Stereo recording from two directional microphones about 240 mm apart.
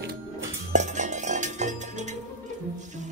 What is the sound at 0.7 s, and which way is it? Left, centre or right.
Music, right.